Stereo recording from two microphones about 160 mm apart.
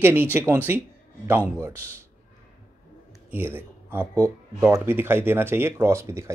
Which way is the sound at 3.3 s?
15° right (ahead or behind).